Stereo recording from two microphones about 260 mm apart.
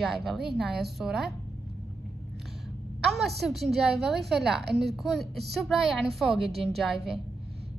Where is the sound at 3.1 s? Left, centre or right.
Centre.